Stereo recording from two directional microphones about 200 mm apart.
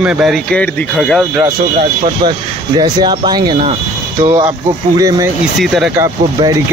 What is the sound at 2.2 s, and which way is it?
Speech, 20° right (ahead or behind).